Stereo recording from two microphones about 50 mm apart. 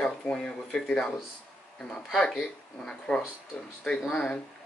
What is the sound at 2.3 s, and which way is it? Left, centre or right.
Speech, centre.